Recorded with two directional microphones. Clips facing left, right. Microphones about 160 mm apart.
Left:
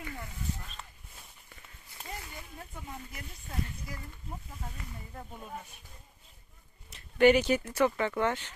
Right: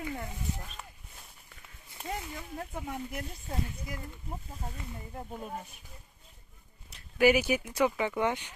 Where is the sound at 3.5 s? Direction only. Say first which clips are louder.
Right 1 dB; 30° right (ahead or behind).